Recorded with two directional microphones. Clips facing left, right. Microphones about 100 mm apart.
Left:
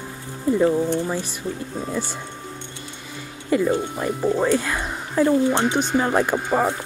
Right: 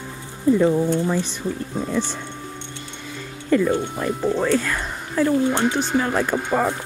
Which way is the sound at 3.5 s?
15° left (ahead or behind).